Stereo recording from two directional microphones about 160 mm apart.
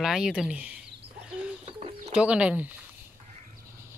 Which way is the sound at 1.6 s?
40° right (ahead or behind).